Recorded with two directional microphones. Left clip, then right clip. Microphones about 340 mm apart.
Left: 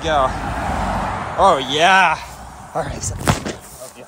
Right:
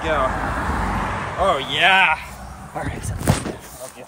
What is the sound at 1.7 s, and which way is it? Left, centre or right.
Speech, centre.